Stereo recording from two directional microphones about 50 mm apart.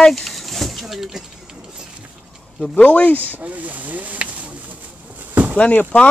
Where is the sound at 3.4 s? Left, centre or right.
Right.